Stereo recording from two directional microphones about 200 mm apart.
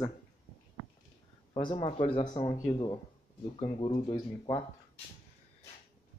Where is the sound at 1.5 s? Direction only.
25° left (ahead or behind).